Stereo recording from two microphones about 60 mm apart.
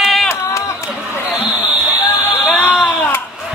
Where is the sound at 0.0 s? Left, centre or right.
Centre.